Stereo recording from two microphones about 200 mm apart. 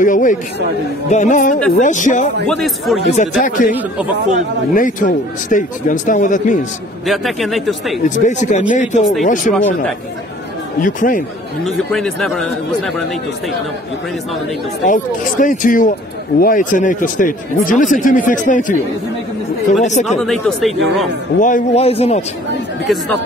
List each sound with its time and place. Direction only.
0.0 s a man's voice: 40° left (ahead or behind)
2.4 s speech: centre (ahead or behind)
3.1 s a man's voice: 40° left (ahead or behind)
4.7 s a man's voice: 40° left (ahead or behind)
7.1 s speech: centre (ahead or behind)
8.3 s a man's voice: 35° left (ahead or behind)
10.8 s speech: 40° left (ahead or behind)
11.6 s speech: centre (ahead or behind)
14.9 s a man's voice: 40° left (ahead or behind)
19.8 s a man's voice: 35° left (ahead or behind)
20.2 s speech: centre (ahead or behind)
21.4 s a man's voice: 40° left (ahead or behind)